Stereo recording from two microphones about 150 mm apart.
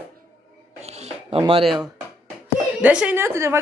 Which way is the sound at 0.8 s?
45° right (ahead or behind).